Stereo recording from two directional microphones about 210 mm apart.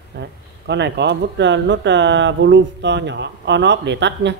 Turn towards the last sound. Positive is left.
turn(degrees=-55)  # may be behind; listen again after turning